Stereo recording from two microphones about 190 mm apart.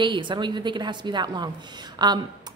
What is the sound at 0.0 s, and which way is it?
Speech, 25° right (ahead or behind).